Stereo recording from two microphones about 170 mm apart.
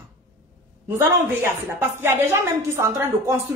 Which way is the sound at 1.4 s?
15° right (ahead or behind).